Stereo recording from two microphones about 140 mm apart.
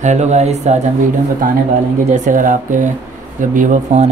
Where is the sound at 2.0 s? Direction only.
65° right (ahead or behind).